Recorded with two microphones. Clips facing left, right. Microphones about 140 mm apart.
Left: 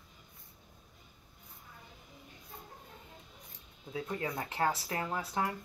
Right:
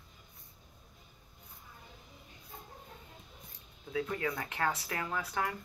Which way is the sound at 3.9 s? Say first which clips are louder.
Right 2 dB; 25° left (ahead or behind).